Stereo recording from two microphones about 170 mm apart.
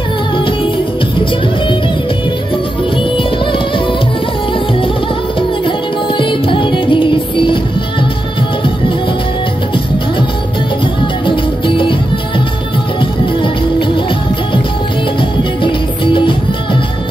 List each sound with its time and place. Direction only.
5.7 s music: 30° left (ahead or behind)
11.2 s music: 30° left (ahead or behind)
13.0 s music: 30° left (ahead or behind)
15.6 s music: 30° left (ahead or behind)